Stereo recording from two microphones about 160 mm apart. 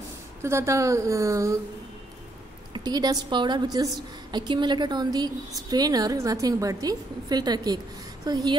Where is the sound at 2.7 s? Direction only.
25° right (ahead or behind).